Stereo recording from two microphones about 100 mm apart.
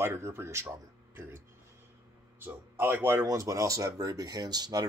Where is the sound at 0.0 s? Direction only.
30° right (ahead or behind).